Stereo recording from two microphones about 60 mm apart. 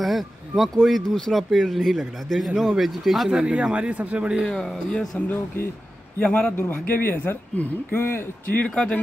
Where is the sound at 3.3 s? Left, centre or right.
Centre.